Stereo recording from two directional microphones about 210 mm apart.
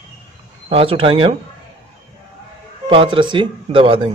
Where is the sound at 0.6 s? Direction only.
25° right (ahead or behind).